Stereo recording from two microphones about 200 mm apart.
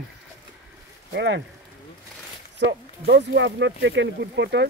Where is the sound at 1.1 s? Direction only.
60° right (ahead or behind).